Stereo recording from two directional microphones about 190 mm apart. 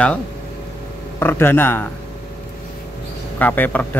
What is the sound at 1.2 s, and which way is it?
Speech, 10° left (ahead or behind).